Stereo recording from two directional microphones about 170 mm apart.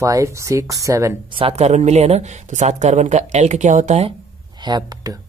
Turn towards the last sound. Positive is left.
turn(degrees=-25)  # may be behind; listen again after turning